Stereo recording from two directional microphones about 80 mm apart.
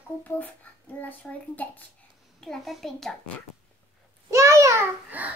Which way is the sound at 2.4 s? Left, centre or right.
Centre.